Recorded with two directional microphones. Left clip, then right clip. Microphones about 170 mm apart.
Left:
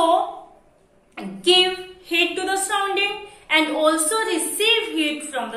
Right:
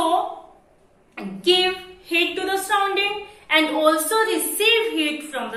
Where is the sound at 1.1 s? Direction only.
10° left (ahead or behind).